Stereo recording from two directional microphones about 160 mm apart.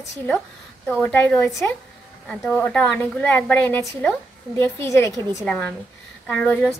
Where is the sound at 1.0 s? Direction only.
10° left (ahead or behind).